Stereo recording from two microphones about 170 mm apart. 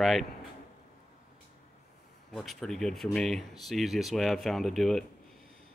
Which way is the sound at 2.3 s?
Centre (ahead or behind).